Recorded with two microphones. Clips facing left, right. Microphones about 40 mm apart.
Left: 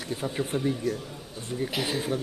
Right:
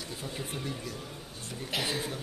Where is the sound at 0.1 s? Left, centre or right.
Left.